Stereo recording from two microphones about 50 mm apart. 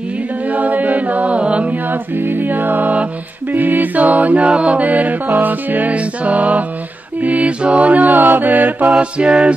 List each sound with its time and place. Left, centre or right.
0.5 s chant: right
2.2 s mantra: right
8.9 s mantra: right